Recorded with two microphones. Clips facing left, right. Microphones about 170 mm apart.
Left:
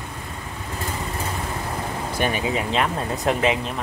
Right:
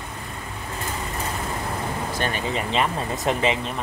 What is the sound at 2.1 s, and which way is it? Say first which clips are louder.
Speech: left 5 dB; 10° left (ahead or behind).